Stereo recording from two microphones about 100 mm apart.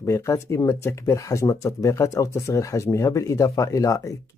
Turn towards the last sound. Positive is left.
turn(degrees=35)  # may be behind; listen again after turning